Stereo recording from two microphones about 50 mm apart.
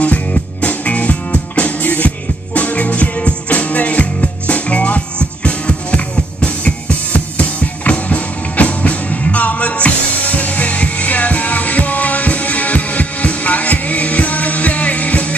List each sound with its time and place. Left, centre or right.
0.0 s music: left